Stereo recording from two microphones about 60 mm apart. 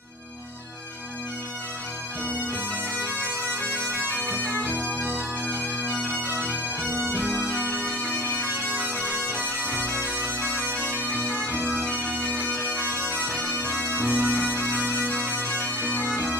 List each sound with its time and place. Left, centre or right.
3.8 s bagpipes: right
4.8 s organ: left
5.1 s bagpipes: right
7.2 s bagpipes: left
7.4 s bagpipes: right
12.4 s bagpipes: left
12.6 s bagpipes: right
15.5 s bagpipes: left